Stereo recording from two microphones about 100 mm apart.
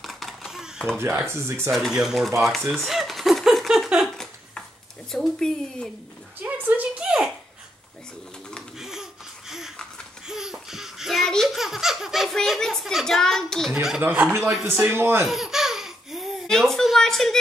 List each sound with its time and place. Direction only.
0.0 s a sound: centre (ahead or behind)
1.2 s a man's voice: 25° right (ahead or behind)
1.7 s speech: 5° right (ahead or behind)
2.7 s a sound: centre (ahead or behind)
5.1 s speech: 5° left (ahead or behind)
6.4 s speech: 15° right (ahead or behind)
8.7 s a sound: 5° right (ahead or behind)
10.2 s laughter: 5° right (ahead or behind)
13.7 s speech: 5° right (ahead or behind)
14.6 s a man's voice: 20° right (ahead or behind)
15.2 s baby laughter: 5° right (ahead or behind)